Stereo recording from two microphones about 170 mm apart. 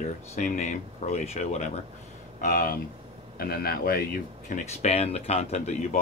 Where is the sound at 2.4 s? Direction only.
55° left (ahead or behind).